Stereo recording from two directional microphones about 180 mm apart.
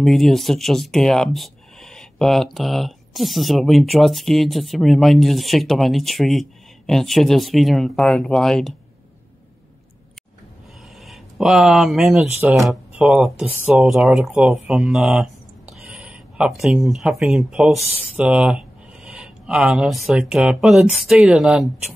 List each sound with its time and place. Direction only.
0.0 s speech: centre (ahead or behind)
11.0 s speech: centre (ahead or behind)